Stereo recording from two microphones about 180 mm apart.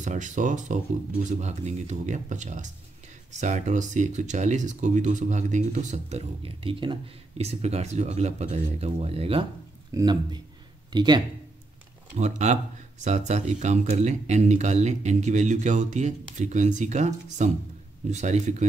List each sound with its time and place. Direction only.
0.0 s speech: 45° right (ahead or behind); by 11.2 s 25° right (ahead or behind)
12.2 s speech: 40° right (ahead or behind)